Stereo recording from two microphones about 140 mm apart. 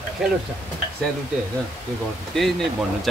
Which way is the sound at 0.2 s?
Centre (ahead or behind).